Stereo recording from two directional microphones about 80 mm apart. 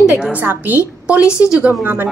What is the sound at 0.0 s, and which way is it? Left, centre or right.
Speech, centre.